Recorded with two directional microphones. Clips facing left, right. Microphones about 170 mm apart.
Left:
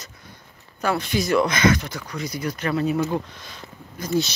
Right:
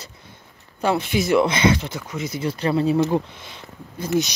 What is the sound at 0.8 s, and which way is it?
Speech, 25° right (ahead or behind).